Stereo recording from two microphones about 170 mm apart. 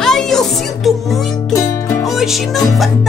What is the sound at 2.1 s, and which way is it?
Music, centre (ahead or behind).